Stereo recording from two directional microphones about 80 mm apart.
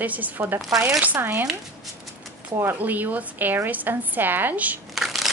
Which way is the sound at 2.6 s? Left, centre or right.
Right.